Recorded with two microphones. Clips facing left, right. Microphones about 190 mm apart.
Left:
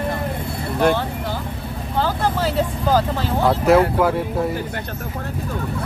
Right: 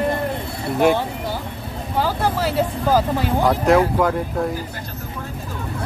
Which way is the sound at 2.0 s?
10° right (ahead or behind).